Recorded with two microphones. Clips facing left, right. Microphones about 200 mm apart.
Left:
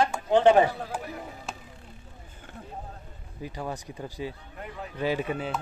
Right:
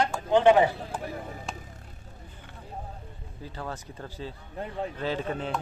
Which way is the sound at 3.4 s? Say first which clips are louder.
Left 3 dB; 15° left (ahead or behind).